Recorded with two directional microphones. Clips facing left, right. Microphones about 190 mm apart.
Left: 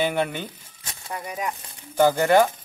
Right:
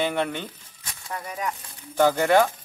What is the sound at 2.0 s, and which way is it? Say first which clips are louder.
Speech: left 1 dB; centre (ahead or behind).